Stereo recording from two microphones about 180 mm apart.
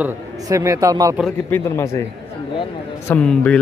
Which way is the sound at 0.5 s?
20° right (ahead or behind).